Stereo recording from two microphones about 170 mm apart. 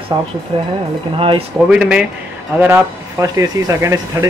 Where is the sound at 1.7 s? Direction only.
5° right (ahead or behind).